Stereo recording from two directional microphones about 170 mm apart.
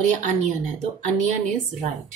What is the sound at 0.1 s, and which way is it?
Speech, 45° right (ahead or behind).